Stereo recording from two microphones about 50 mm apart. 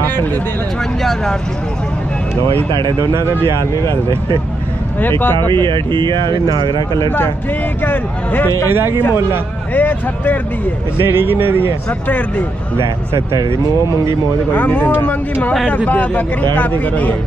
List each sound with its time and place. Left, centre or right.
0.0 s a sound: left
3.0 s speech: right
5.0 s speech: left
7.8 s speech: left
8.7 s speech: right
9.8 s speech: left
11.0 s speech: right
12.1 s speech: left
14.5 s speech: left